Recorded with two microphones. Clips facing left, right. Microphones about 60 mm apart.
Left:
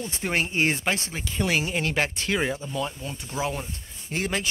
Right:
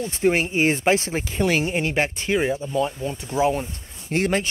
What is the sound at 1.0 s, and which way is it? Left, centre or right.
Speech, right.